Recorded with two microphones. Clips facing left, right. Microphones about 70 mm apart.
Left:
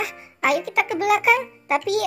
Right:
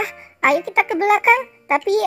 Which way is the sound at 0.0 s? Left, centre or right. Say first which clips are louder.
Right 4 dB; right.